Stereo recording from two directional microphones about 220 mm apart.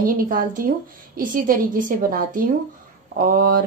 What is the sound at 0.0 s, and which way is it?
Speech, 40° right (ahead or behind).